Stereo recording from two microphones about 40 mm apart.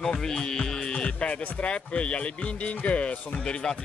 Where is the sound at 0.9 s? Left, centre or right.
Left.